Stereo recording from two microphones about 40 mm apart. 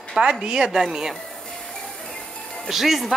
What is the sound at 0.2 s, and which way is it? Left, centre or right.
Speech, right.